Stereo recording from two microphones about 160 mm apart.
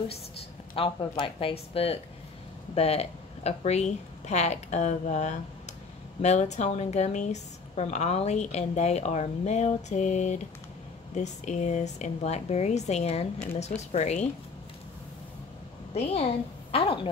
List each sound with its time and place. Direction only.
0.7 s a woman's voice: 35° left (ahead or behind)
15.9 s speech: 40° left (ahead or behind)